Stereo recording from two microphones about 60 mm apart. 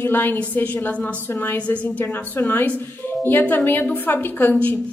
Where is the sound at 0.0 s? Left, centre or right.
Left.